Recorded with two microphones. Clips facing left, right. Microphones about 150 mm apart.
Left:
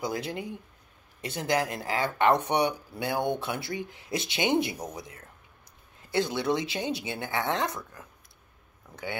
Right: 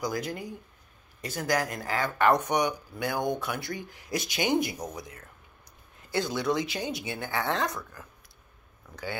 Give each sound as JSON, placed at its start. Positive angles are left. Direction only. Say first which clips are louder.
{"t": 0.0, "sound": "speech", "louder": "even", "side_deg": 25}